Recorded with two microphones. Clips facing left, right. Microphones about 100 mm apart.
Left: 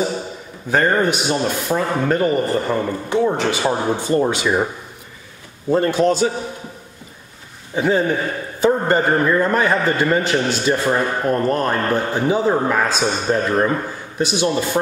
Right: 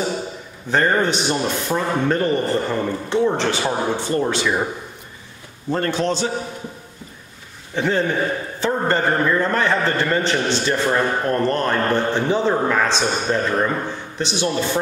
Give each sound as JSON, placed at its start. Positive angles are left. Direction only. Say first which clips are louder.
{"t": 0.7, "sound": "a man's voice", "louder": "left 1 dB", "side_deg": 10}
{"t": 5.8, "sound": "a man's voice", "louder": "left 5 dB", "side_deg": 10}
{"t": 7.7, "sound": "a man's voice", "louder": "left 2 dB", "side_deg": 10}